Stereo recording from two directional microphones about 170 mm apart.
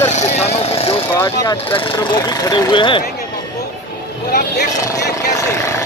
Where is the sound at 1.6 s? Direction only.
30° left (ahead or behind).